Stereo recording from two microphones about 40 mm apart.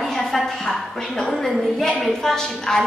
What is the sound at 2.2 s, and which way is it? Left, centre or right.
Speech, centre.